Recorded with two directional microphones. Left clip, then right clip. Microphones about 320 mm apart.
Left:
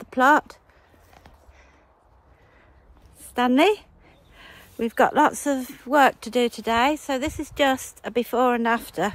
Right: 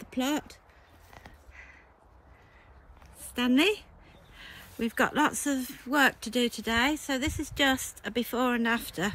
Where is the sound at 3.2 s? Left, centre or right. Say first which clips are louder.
Left 7 dB; centre.